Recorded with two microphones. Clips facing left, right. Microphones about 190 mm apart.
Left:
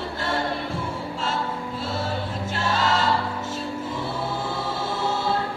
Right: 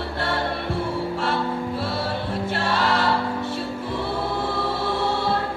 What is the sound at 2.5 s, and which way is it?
Choir, 60° right (ahead or behind).